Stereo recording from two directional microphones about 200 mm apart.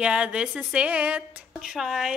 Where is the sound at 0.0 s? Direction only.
5° right (ahead or behind).